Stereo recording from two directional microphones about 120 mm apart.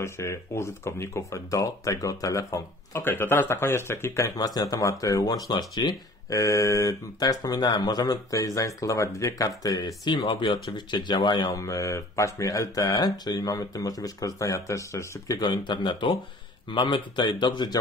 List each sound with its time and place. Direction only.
0.0 s speech: 25° left (ahead or behind); by 17.7 s 40° left (ahead or behind)